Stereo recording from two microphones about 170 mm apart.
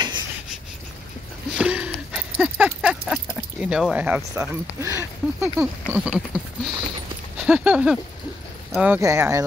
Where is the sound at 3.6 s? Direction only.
5° right (ahead or behind).